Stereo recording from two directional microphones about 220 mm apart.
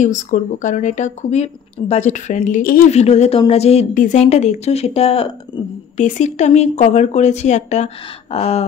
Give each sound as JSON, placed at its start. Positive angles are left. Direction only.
{"t": 0.0, "sound": "speech", "side_deg": 35}